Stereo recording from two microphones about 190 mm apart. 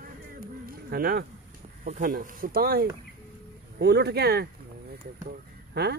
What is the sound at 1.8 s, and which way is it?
Speech, 45° right (ahead or behind).